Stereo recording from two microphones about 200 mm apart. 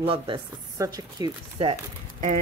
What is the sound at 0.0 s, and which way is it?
Speech, 25° right (ahead or behind).